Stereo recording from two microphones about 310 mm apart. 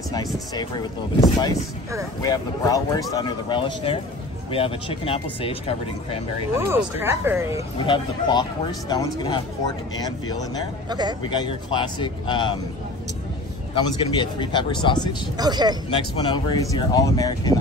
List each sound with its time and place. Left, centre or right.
0.1 s speech: centre
6.6 s speech: centre
7.8 s speech: centre
10.9 s speech: centre
11.2 s speech: centre
13.7 s speech: centre
15.3 s speech: centre
15.9 s speech: centre